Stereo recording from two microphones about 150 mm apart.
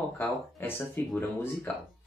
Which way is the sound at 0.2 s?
15° left (ahead or behind).